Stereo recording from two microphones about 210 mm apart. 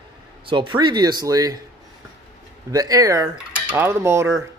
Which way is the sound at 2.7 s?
15° right (ahead or behind).